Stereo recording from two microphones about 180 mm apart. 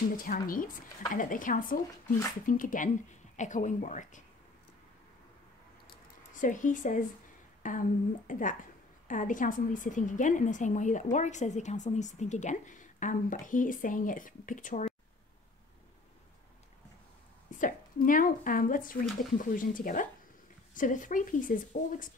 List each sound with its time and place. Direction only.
0.1 s a woman's voice: 50° left (ahead or behind)
5.9 s a sound: 45° left (ahead or behind)
7.6 s a woman's voice: 45° left (ahead or behind)
17.5 s a woman's voice: 45° left (ahead or behind)